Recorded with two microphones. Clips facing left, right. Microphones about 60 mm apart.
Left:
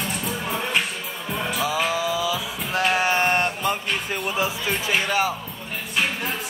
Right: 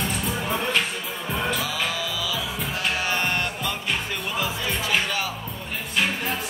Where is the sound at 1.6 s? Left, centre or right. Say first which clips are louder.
Left 5 dB; left.